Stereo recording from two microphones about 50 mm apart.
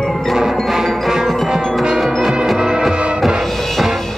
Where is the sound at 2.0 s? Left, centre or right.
Centre.